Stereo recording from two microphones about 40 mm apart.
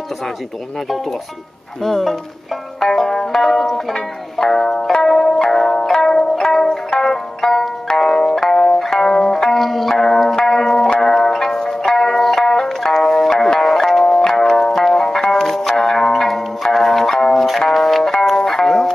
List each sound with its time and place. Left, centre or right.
1.8 s speech: centre
2.8 s banjo: centre
3.4 s music: centre